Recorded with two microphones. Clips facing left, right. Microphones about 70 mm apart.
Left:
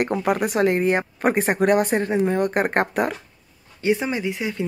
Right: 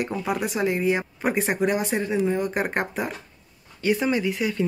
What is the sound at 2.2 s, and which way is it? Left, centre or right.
Speech, left.